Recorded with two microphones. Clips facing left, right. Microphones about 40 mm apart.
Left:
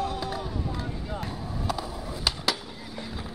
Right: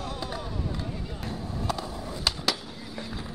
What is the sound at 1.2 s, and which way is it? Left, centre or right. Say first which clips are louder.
Skateboard: even; centre.